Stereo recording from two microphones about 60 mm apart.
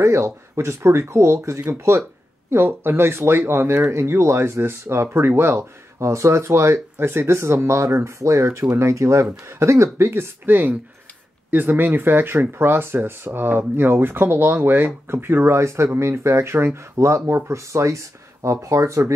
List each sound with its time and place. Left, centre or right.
0.0 s speech: right
2.5 s speech: right
10.5 s speech: right